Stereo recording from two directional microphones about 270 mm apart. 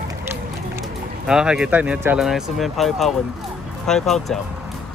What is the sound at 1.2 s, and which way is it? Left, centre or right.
Speech, centre.